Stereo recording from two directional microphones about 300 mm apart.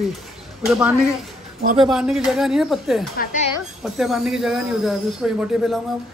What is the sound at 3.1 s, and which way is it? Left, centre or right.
Speech, left.